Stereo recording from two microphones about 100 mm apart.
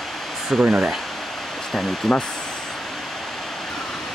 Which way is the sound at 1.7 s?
5° left (ahead or behind).